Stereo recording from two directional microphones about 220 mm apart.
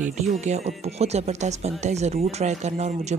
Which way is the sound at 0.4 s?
30° right (ahead or behind).